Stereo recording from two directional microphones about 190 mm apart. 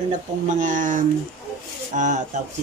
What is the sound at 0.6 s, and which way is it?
Speech, 40° right (ahead or behind).